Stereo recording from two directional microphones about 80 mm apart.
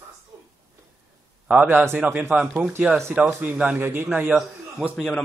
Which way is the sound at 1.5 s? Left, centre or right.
Right.